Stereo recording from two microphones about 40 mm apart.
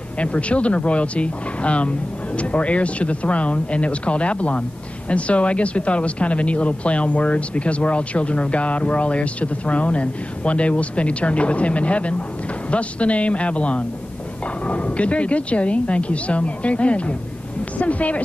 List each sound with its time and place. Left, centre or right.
0.2 s speech: left